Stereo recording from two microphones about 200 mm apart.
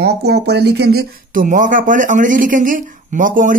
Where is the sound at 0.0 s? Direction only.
55° right (ahead or behind).